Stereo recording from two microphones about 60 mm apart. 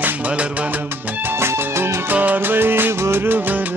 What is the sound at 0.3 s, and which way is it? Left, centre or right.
Music, centre.